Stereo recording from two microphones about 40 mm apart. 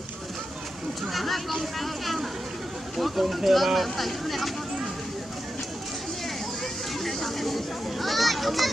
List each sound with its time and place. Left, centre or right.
1.0 s a child's voice: centre
7.0 s a child's voice: centre